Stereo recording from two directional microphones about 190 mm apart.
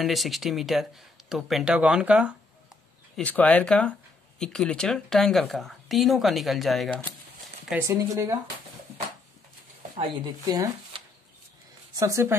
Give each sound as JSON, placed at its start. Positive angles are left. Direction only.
{"t": 0.0, "sound": "speech", "side_deg": 0}
{"t": 3.2, "sound": "speech", "side_deg": 5}
{"t": 7.7, "sound": "speech", "side_deg": -15}
{"t": 10.4, "sound": "speech", "side_deg": -20}